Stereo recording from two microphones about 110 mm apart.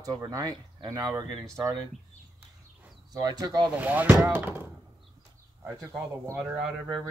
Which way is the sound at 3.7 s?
15° right (ahead or behind).